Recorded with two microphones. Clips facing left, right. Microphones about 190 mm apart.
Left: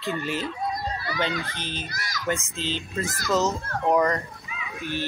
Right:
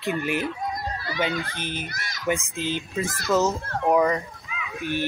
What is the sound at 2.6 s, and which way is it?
A child's voice, 15° right (ahead or behind).